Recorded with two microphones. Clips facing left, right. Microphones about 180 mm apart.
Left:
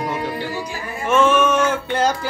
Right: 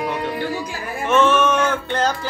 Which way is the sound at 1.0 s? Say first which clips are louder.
Even; 10° left (ahead or behind).